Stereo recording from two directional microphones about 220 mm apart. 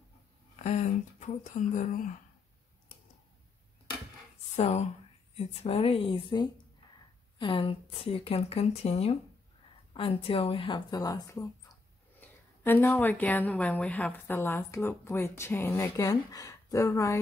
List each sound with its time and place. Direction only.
0.7 s speech: 30° left (ahead or behind)
4.6 s speech: 30° left (ahead or behind)